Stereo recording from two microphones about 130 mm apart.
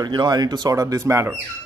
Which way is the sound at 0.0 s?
30° right (ahead or behind).